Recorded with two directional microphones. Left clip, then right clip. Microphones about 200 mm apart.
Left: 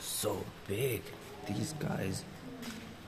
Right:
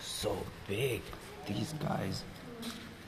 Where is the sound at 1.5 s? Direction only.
15° left (ahead or behind).